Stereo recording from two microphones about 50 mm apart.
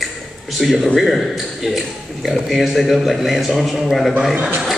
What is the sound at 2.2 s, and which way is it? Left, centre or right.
A man's voice, centre.